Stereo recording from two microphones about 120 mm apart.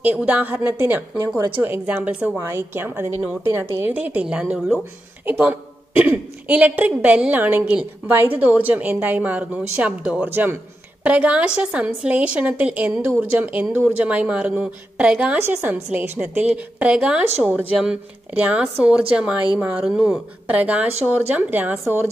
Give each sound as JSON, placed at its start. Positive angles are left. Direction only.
{"t": 0.0, "sound": "a woman's voice", "side_deg": -10}